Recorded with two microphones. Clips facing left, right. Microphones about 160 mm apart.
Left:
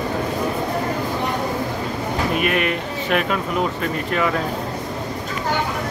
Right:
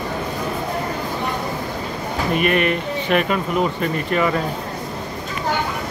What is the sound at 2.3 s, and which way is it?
Speech, centre (ahead or behind).